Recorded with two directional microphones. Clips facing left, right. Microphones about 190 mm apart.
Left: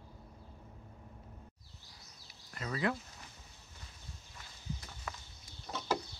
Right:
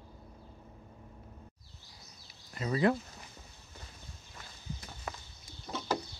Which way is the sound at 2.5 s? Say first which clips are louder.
Right 6 dB; 20° right (ahead or behind).